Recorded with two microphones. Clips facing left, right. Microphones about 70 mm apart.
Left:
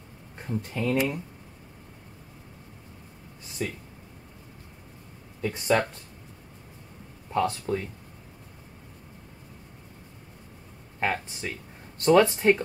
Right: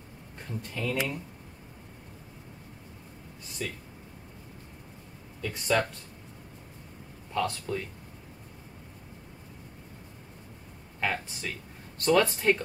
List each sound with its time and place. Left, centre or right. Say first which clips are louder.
0.5 s speech: left 5 dB; left
3.6 s speech: left 4 dB; left
5.4 s speech: left 3 dB; left
7.3 s speech: left 4 dB; left
11.0 s speech: left 3 dB; left